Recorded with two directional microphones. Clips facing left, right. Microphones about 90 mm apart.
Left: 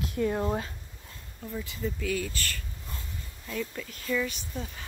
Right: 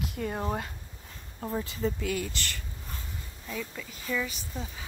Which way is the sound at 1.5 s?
35° right (ahead or behind).